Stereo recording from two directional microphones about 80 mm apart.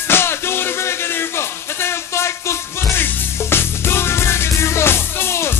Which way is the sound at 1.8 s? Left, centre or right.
Left.